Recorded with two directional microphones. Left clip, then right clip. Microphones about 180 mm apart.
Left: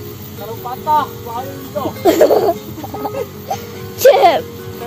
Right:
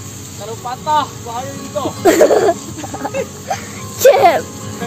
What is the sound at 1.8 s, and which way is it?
Speech, 20° right (ahead or behind).